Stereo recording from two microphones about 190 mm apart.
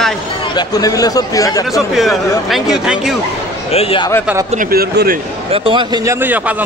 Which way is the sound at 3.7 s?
30° left (ahead or behind).